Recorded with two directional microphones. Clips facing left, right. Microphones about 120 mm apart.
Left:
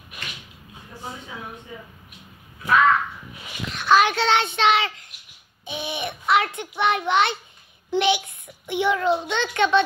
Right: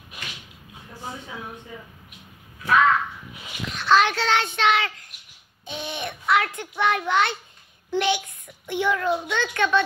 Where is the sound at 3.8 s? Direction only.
10° left (ahead or behind).